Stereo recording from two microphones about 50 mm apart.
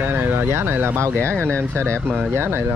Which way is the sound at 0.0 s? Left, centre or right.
Right.